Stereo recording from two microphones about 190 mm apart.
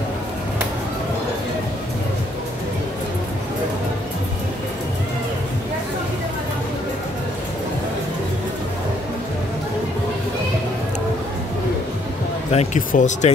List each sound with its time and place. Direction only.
12.4 s speech: 40° left (ahead or behind)